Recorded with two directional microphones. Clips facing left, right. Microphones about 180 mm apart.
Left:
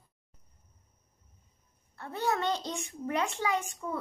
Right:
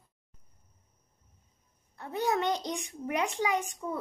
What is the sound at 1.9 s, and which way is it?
A child's voice, 15° right (ahead or behind).